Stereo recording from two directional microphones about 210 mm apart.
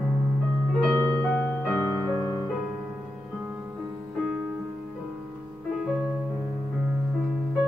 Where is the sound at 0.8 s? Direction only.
5° left (ahead or behind).